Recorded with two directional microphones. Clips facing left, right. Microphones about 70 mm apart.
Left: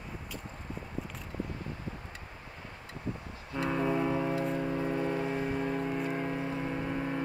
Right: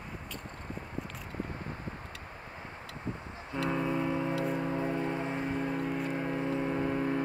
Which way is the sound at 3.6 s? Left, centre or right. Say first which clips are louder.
Left 2 dB; centre.